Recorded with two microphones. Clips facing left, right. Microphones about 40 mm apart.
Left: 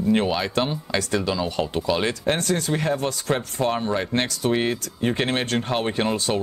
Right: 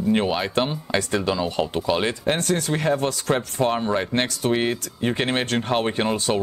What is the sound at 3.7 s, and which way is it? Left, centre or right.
Speech, centre.